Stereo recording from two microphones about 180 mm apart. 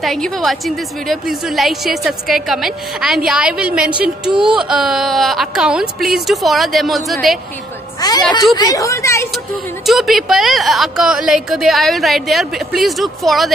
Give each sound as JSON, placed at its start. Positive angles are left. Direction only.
{"t": 0.0, "sound": "a woman's voice", "side_deg": 0}
{"t": 8.0, "sound": "a woman's voice", "side_deg": 20}
{"t": 9.8, "sound": "a woman's voice", "side_deg": 0}